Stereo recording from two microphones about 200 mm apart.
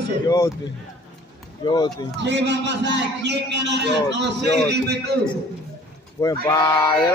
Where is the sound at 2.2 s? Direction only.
60° right (ahead or behind).